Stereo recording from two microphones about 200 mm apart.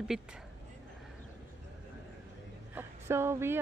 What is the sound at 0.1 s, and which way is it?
Speech, 5° right (ahead or behind).